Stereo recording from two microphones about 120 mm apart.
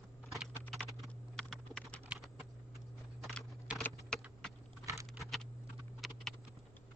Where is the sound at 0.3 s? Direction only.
Centre (ahead or behind).